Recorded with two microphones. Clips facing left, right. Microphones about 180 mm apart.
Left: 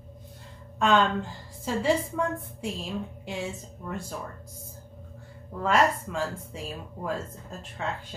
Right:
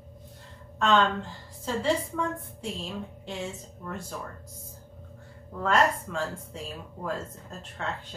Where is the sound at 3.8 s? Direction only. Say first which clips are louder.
Left 2 dB; 10° left (ahead or behind).